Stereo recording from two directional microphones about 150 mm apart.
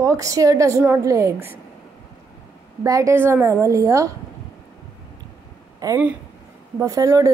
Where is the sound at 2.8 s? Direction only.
20° right (ahead or behind).